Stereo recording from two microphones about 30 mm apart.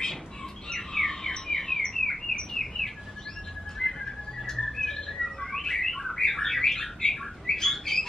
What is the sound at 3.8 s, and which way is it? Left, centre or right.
Whistling, centre.